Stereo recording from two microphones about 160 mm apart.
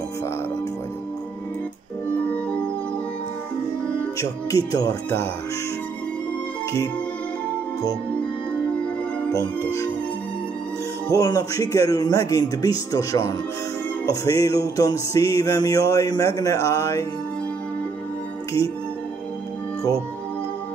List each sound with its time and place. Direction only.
2.2 s music: 10° left (ahead or behind)
4.2 s music: 25° left (ahead or behind)
11.1 s music: 20° left (ahead or behind)